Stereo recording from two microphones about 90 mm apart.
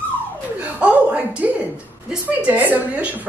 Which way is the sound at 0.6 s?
15° right (ahead or behind).